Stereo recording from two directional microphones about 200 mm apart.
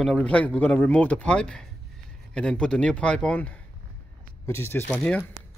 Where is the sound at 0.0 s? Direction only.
5° left (ahead or behind).